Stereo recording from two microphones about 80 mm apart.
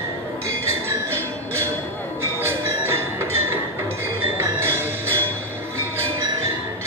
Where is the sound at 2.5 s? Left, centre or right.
Right.